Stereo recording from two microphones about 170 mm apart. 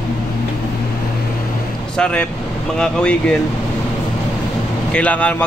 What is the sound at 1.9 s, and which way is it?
Speech, 5° left (ahead or behind).